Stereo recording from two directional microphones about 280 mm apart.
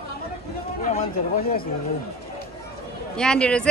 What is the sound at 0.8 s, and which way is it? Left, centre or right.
Speech, left.